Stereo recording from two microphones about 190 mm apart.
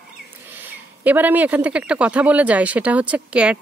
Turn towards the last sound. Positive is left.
turn(degrees=-5)  # may be behind; listen again after turning